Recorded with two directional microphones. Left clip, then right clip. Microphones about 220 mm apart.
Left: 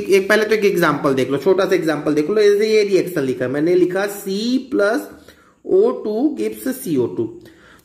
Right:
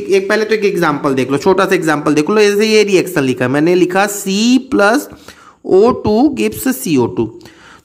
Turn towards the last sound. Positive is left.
turn(degrees=-35)  # may be behind; listen again after turning